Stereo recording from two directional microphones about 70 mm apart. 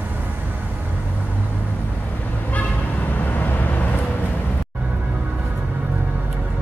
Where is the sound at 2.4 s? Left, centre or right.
Left.